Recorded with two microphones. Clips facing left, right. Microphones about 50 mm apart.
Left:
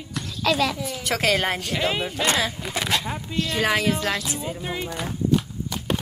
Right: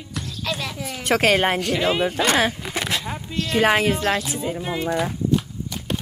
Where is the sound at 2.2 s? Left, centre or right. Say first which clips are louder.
Right 4 dB; right.